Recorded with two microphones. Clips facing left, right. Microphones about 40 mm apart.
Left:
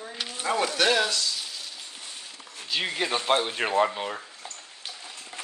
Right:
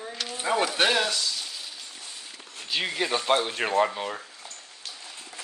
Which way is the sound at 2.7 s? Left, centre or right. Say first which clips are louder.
Even; centre.